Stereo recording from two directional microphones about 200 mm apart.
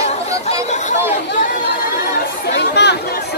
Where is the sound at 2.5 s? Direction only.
60° left (ahead or behind).